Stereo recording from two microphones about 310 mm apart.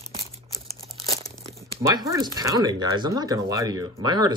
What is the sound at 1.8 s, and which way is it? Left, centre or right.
Speech, centre.